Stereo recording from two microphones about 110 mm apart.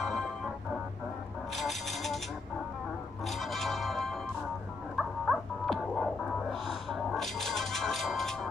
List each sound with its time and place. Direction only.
0.0 s organ: centre (ahead or behind)
1.5 s a sound: centre (ahead or behind)
3.3 s music: centre (ahead or behind)